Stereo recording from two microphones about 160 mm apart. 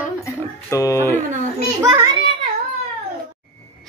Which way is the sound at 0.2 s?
20° left (ahead or behind).